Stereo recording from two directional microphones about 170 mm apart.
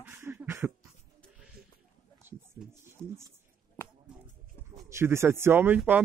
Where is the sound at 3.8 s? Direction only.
15° left (ahead or behind).